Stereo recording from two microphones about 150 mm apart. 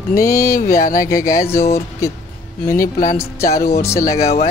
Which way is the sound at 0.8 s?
65° left (ahead or behind).